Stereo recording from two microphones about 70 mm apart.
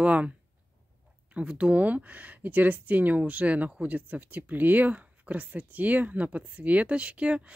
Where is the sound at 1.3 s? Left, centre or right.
Centre.